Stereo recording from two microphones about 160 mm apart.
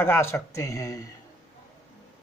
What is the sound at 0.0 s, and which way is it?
Speech, 15° left (ahead or behind).